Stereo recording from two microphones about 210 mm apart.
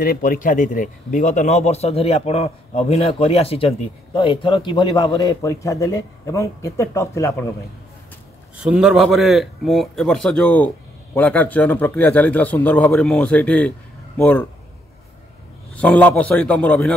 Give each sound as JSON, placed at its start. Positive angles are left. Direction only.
{"t": 0.0, "sound": "a man's voice", "side_deg": 45}
{"t": 8.5, "sound": "a man's voice", "side_deg": -5}
{"t": 15.7, "sound": "a man's voice", "side_deg": 5}